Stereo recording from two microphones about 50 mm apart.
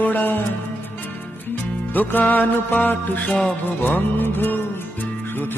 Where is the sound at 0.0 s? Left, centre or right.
Left.